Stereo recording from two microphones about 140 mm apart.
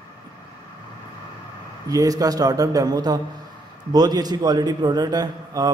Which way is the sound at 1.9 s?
25° right (ahead or behind).